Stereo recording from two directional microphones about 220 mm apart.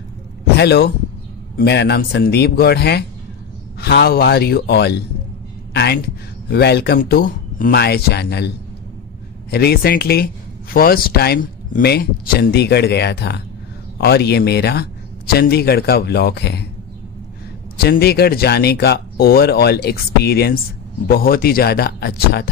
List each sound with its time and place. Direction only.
0.6 s speech: 45° left (ahead or behind)
17.7 s speech: 45° left (ahead or behind)